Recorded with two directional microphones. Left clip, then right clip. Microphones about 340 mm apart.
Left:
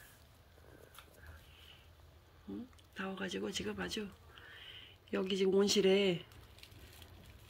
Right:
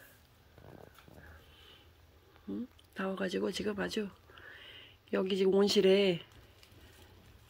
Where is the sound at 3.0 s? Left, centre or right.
Centre.